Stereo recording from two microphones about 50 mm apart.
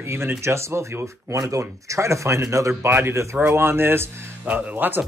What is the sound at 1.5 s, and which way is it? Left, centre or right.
Speech, right.